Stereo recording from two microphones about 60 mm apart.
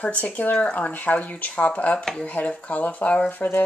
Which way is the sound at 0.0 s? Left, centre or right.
Left.